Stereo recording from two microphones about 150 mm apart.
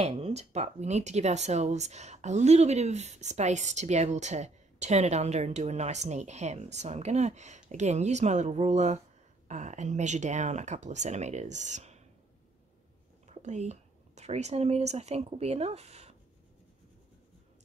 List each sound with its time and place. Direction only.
0.0 s speech: 45° right (ahead or behind)
13.3 s speech: 50° right (ahead or behind)